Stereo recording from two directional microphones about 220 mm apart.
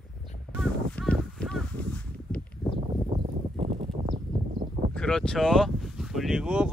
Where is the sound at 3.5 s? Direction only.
25° right (ahead or behind).